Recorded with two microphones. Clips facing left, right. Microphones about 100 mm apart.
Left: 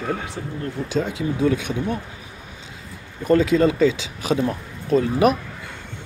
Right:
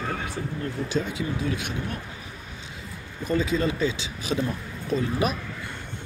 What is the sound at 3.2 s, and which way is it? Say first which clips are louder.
Speech: left 8 dB; 90° left.